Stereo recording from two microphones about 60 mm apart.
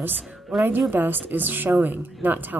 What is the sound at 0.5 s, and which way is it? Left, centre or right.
Speech, centre.